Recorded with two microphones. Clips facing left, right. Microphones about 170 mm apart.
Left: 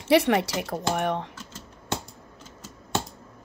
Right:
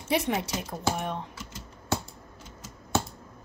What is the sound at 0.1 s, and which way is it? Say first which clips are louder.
Speech: left 7 dB; 70° left (ahead or behind).